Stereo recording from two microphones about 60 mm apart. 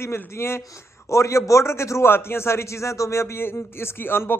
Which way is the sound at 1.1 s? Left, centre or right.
Left.